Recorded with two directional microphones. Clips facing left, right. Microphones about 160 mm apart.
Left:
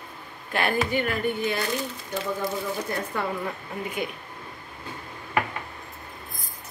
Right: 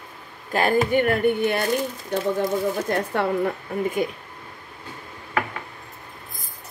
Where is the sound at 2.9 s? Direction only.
70° right (ahead or behind).